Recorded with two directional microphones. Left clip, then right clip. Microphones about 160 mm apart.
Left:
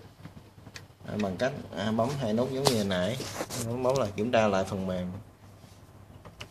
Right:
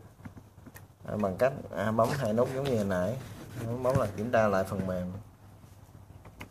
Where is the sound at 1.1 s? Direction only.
25° right (ahead or behind).